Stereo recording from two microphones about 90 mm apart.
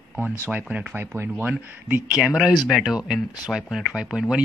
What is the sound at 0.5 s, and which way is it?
Speech, 15° right (ahead or behind).